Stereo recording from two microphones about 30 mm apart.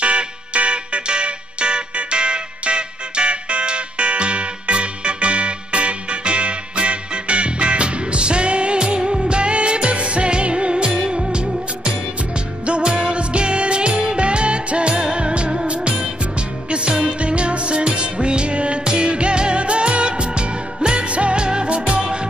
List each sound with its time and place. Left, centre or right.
0.0 s music: right
12.6 s music: right
22.0 s music: right